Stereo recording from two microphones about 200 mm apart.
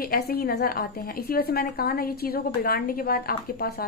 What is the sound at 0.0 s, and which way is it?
A woman's voice, 50° left (ahead or behind).